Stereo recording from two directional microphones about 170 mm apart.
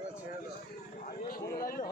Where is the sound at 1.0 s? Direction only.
60° left (ahead or behind).